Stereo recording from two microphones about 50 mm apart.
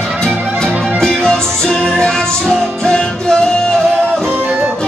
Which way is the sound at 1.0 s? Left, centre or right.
Centre.